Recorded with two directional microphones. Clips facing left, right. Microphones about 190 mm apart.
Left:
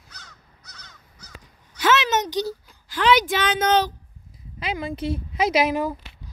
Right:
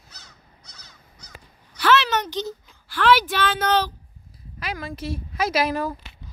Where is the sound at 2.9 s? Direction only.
20° left (ahead or behind).